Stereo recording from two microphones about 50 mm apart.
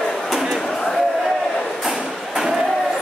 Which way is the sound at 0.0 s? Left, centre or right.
Centre.